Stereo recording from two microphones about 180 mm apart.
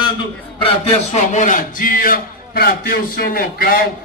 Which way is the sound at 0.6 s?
35° left (ahead or behind).